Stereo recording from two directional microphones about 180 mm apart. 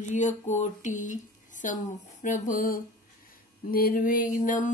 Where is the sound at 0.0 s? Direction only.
40° left (ahead or behind).